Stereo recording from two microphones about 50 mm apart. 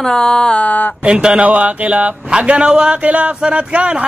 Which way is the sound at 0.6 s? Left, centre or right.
Left.